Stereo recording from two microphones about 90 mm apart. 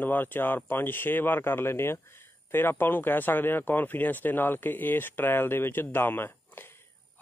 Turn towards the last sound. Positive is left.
turn(degrees=25)  # may be behind; listen again after turning